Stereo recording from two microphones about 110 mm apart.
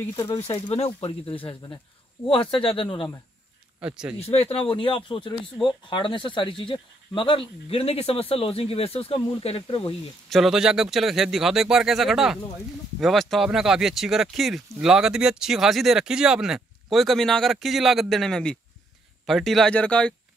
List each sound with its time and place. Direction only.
0.6 s speech: 65° left (ahead or behind)
3.8 s speech: 10° right (ahead or behind)
4.2 s speech: 65° left (ahead or behind)
10.3 s speech: 5° right (ahead or behind)